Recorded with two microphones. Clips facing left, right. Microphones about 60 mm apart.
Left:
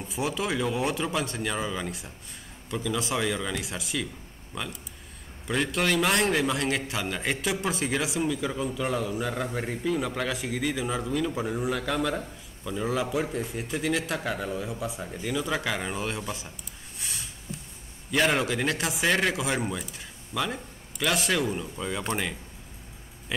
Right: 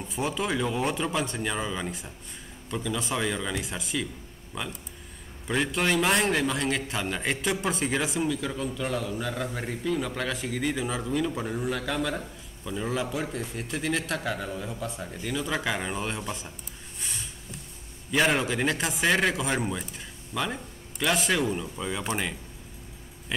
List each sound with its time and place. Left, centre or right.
0.0 s a man's voice: centre
17.0 s a sound: centre
18.1 s a man's voice: centre